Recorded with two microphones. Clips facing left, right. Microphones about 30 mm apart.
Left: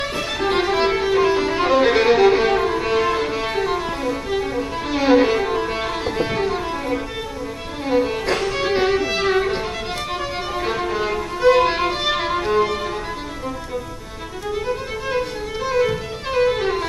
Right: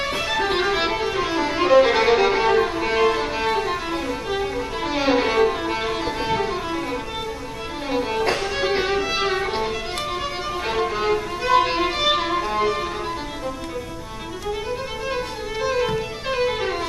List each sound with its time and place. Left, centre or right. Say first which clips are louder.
0.3 s music: left 2 dB; centre
1.6 s violin: right 2 dB; centre
7.9 s music: left 3 dB; centre
9.1 s violin: left 3 dB; centre
10.6 s violin: even; centre
15.0 s music: left 5 dB; centre